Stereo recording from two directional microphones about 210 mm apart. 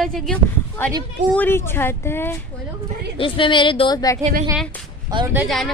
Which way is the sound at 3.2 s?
25° left (ahead or behind).